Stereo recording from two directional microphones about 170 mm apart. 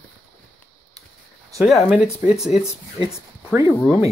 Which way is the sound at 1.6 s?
5° right (ahead or behind).